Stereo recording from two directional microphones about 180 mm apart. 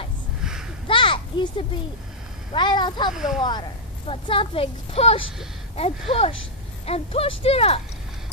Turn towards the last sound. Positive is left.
turn(degrees=35)  # may be behind; listen again after turning